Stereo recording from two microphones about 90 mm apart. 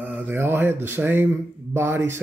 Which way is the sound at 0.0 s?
20° right (ahead or behind).